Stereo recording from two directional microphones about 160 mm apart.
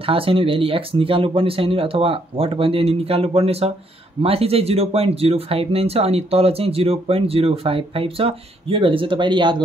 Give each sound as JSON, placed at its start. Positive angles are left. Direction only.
{"t": 0.0, "sound": "speech", "side_deg": -35}